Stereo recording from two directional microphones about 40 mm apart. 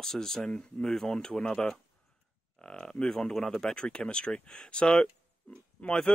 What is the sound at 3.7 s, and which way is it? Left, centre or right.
Speech, left.